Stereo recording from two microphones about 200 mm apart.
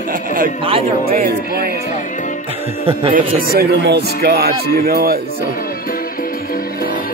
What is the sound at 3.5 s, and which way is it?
Music, 55° right (ahead or behind).